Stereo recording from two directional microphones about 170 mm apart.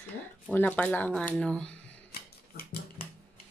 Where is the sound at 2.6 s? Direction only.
65° left (ahead or behind).